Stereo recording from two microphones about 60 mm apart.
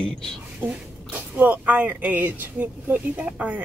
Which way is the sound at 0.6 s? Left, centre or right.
Right.